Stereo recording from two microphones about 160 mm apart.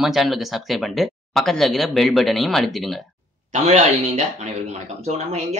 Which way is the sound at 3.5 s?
45° right (ahead or behind).